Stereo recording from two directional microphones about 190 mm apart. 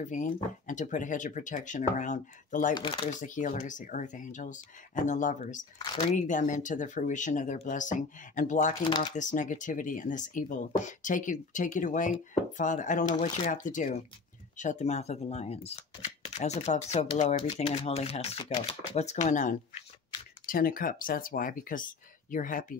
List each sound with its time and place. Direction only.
0.0 s speech: 40° left (ahead or behind)
2.7 s speech: 25° left (ahead or behind)
3.1 s speech: 40° left (ahead or behind)
8.8 s speech: 25° left (ahead or behind)
9.1 s speech: 40° left (ahead or behind)